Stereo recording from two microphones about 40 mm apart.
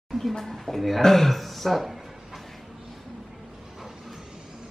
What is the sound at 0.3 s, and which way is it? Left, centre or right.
Speech, centre.